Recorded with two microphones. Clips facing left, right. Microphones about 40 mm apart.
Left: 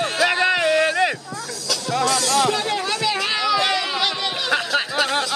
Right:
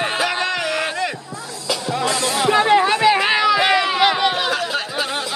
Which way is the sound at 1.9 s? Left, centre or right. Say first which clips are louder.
Left 2 dB; right.